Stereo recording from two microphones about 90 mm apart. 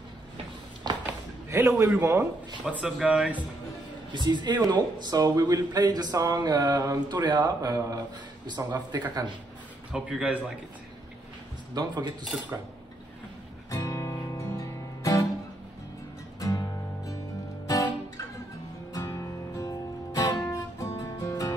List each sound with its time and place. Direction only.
1.0 s a sound: 35° right (ahead or behind)
1.9 s a man's voice: 30° right (ahead or behind)
2.7 s speech: 10° right (ahead or behind)
4.1 s speech: 55° right (ahead or behind)
9.9 s speech: 10° right (ahead or behind)
11.7 s speech: 55° right (ahead or behind)
13.7 s music: 35° left (ahead or behind)
16.3 s music: 40° left (ahead or behind)